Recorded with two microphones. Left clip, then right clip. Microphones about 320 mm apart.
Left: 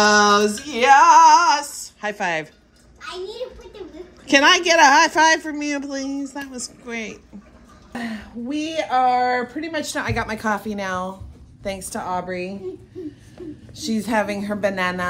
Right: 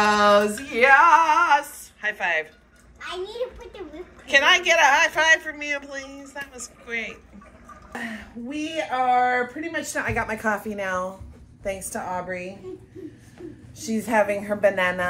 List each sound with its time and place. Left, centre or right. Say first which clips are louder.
0.0 s female singing: left 3 dB; centre
4.3 s a man's voice: left 3 dB; left
13.7 s a woman's voice: even; centre